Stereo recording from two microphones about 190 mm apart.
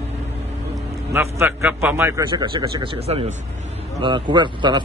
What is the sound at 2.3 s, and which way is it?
A man's voice, 25° right (ahead or behind).